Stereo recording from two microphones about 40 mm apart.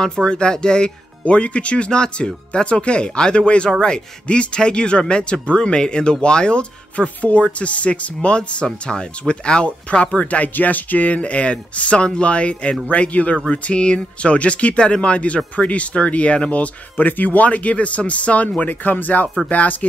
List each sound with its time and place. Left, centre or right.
0.0 s speech: centre
1.2 s speech: left
10.5 s speech: left
16.9 s speech: left
18.6 s speech: left